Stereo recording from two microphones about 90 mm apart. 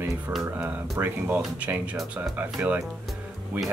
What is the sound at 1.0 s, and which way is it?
Speech, 25° right (ahead or behind).